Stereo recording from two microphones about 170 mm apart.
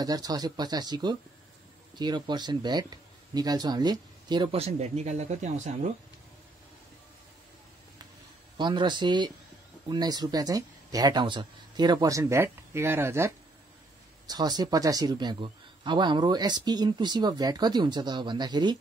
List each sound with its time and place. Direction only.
0.0 s a man's voice: 20° right (ahead or behind); by 5.9 s 45° right (ahead or behind)
8.5 s a man's voice: 25° right (ahead or behind)